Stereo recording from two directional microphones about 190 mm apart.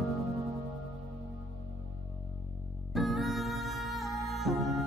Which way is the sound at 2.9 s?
Centre (ahead or behind).